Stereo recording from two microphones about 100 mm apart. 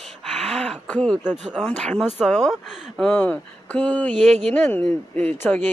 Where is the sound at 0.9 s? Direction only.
10° left (ahead or behind).